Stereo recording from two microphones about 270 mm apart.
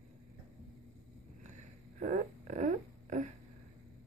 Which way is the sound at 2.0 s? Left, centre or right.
Right.